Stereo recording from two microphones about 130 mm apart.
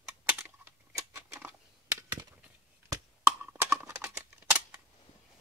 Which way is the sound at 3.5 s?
20° right (ahead or behind).